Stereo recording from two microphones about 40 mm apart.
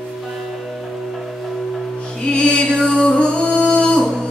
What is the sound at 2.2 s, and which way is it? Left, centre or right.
Music, left.